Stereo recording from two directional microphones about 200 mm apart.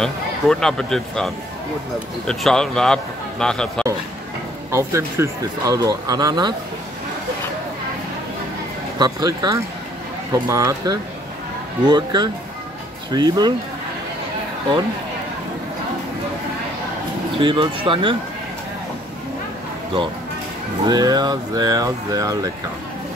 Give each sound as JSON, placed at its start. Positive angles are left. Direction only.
{"t": 0.0, "sound": "a man's voice", "side_deg": 5}
{"t": 4.6, "sound": "speech", "side_deg": -15}
{"t": 8.9, "sound": "speech", "side_deg": -20}
{"t": 17.4, "sound": "speech", "side_deg": -25}
{"t": 20.8, "sound": "speech", "side_deg": -20}